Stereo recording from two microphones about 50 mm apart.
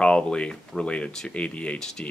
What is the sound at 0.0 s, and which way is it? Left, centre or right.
Speech, centre.